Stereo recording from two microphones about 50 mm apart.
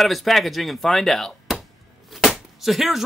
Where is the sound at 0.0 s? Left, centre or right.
Centre.